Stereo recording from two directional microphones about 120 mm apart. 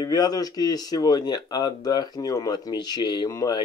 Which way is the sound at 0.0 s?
35° left (ahead or behind).